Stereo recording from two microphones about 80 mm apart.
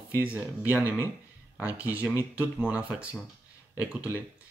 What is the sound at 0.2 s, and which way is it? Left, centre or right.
Speech, centre.